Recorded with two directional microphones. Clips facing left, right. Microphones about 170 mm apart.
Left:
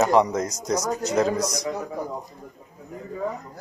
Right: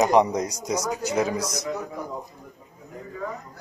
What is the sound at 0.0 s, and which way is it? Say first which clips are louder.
Speech: even; 15° right (ahead or behind).